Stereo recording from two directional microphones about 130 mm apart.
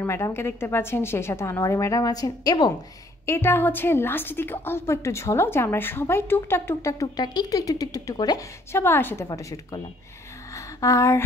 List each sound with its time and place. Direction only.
0.0 s a woman's voice: 20° left (ahead or behind)
3.3 s a woman's voice: 20° left (ahead or behind)
8.7 s a woman's voice: 15° left (ahead or behind)
10.5 s a sound: 25° left (ahead or behind)